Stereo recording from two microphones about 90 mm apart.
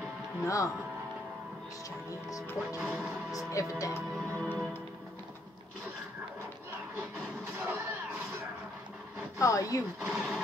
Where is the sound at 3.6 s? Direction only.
40° left (ahead or behind).